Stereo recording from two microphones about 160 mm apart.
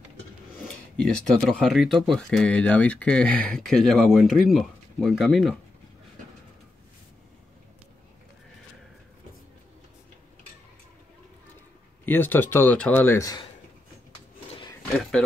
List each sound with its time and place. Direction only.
1.3 s speech: centre (ahead or behind)
12.1 s speech: 10° left (ahead or behind)
15.0 s speech: 5° left (ahead or behind)